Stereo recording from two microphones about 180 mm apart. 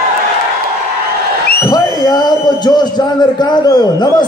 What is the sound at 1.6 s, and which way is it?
A man's voice, 20° left (ahead or behind).